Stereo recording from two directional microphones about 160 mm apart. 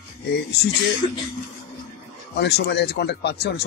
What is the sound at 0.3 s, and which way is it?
Speech, 90° left.